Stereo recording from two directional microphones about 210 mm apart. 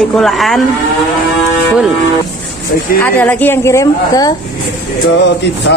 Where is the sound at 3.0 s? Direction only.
10° left (ahead or behind).